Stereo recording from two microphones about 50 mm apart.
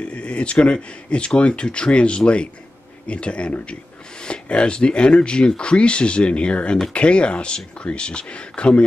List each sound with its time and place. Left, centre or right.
0.1 s speech: left